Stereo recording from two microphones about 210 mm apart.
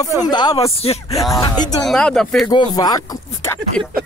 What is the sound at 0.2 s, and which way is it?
Speech, 20° left (ahead or behind).